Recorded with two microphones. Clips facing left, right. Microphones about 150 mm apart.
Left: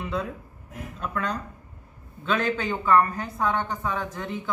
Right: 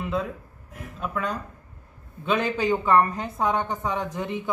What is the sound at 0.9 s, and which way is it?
A woman's voice, 5° right (ahead or behind).